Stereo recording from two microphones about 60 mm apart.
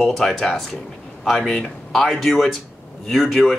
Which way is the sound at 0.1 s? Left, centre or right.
Centre.